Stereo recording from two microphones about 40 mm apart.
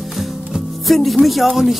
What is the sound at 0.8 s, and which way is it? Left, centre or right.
Speech, centre.